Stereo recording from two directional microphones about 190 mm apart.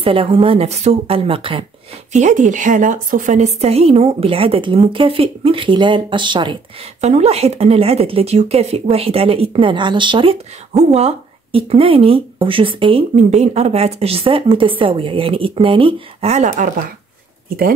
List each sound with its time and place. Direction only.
0.0 s a woman's voice: 30° right (ahead or behind)
2.1 s a woman's voice: 40° right (ahead or behind)